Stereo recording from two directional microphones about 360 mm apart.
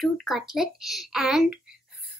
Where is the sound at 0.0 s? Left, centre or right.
Centre.